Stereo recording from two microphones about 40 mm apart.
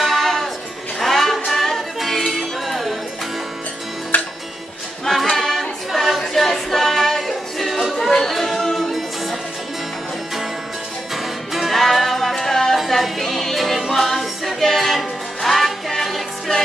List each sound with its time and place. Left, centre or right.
0.0 s music: centre
4.1 s music: left
5.3 s singing: centre
5.9 s music: centre
11.5 s music: centre
11.8 s music: centre
12.7 s music: centre
13.2 s a capella: centre